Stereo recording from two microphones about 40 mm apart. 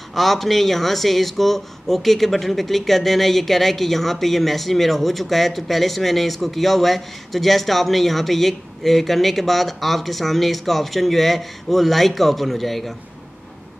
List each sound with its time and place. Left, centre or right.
0.1 s speech: centre